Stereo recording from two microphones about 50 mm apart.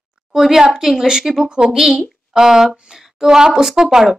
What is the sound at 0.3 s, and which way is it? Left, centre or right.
A woman's voice, centre.